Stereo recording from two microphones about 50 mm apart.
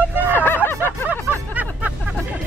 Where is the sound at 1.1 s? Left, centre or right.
Right.